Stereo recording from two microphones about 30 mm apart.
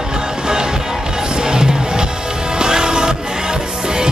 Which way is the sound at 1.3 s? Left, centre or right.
Right.